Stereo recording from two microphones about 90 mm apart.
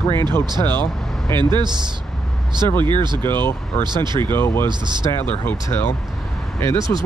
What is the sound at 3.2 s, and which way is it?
Speech, 25° left (ahead or behind).